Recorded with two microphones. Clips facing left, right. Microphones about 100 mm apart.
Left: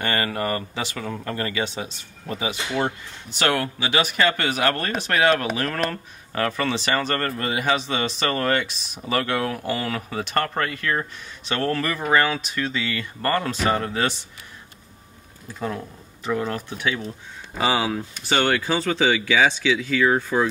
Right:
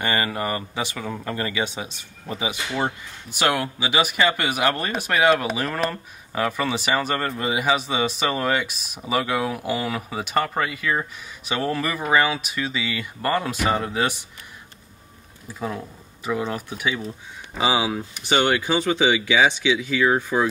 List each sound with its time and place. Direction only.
0.0 s speech: 15° right (ahead or behind)
15.4 s speech: 5° right (ahead or behind)